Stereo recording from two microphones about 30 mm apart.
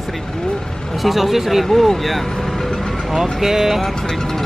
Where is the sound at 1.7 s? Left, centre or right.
Centre.